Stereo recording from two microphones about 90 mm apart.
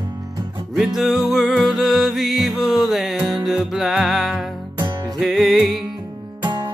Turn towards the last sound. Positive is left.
turn(degrees=-55)  # may be behind; listen again after turning